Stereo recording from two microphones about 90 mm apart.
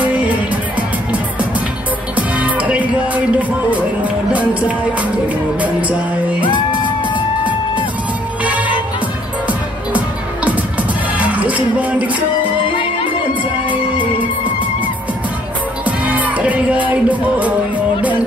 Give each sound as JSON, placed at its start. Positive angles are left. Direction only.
{"t": 0.0, "sound": "music", "side_deg": -15}
{"t": 2.1, "sound": "music", "side_deg": -15}
{"t": 6.4, "sound": "music", "side_deg": 65}
{"t": 8.5, "sound": "music", "side_deg": -15}
{"t": 15.8, "sound": "music", "side_deg": -15}